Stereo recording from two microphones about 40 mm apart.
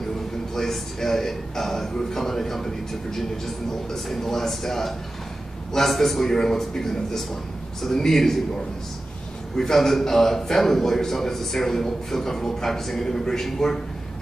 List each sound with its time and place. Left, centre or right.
0.6 s a man's voice: centre
9.6 s a man's voice: centre